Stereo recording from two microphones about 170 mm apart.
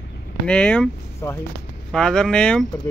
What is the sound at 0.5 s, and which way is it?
Speech, 5° left (ahead or behind).